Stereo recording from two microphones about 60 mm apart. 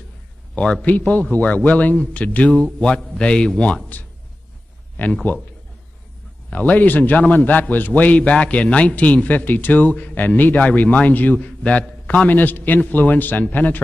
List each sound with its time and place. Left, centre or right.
0.8 s a man's voice: left
5.0 s a man's voice: left
6.5 s a man's voice: left
12.3 s a man's voice: left